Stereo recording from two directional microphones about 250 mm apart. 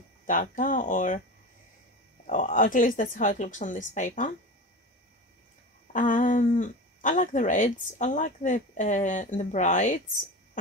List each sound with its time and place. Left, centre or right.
0.3 s speech: left
2.2 s speech: left
5.9 s speech: left